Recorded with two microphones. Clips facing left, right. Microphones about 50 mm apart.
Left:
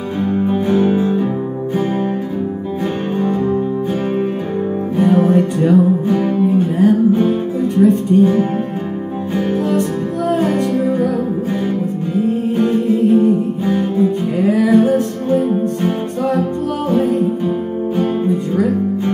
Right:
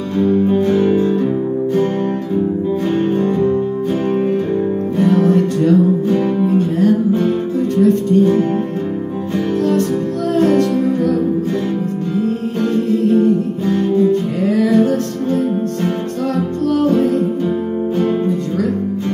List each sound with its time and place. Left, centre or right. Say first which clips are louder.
0.2 s music: right 4 dB; centre
3.2 s music: right 2 dB; centre
4.9 s music: left 1 dB; centre
10.3 s music: right 4 dB; centre
12.2 s music: left 4 dB; centre
16.9 s music: even; centre